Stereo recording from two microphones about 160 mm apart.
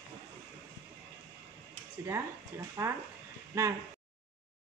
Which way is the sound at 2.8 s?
20° right (ahead or behind).